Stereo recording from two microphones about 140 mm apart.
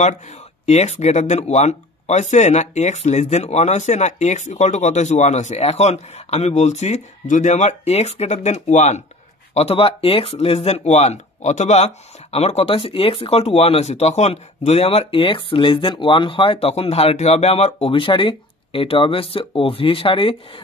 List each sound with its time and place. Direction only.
0.7 s speech: 50° left (ahead or behind)